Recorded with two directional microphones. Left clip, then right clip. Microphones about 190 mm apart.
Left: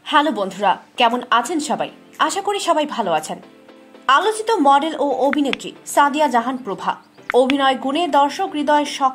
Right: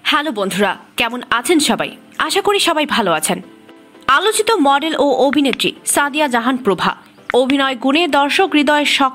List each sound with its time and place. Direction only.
0.0 s a woman's voice: 10° right (ahead or behind)
5.3 s a woman's voice: 5° right (ahead or behind)
5.6 s a woman's voice: 15° right (ahead or behind)